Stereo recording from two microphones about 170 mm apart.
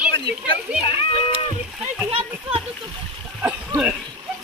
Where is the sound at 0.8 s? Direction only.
35° left (ahead or behind).